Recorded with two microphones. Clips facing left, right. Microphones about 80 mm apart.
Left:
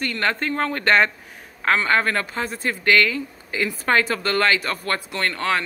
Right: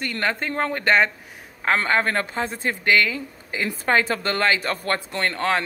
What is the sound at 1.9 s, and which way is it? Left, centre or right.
Speech, right.